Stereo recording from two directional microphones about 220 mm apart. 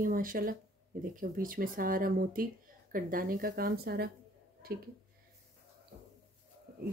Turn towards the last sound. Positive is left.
turn(degrees=-40)  # may be behind; listen again after turning